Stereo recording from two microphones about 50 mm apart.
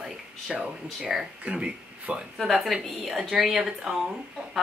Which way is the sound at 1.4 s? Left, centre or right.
Right.